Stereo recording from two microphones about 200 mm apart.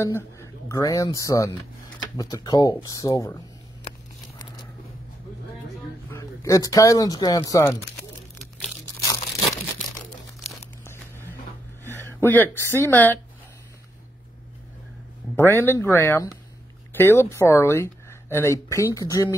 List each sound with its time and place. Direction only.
0.0 s speech: 15° left (ahead or behind)
3.9 s a sound: 30° left (ahead or behind)
6.0 s speech: 15° left (ahead or behind)
11.8 s a sound: 10° left (ahead or behind)
12.7 s speech: 10° left (ahead or behind)
15.3 s speech: 10° left (ahead or behind)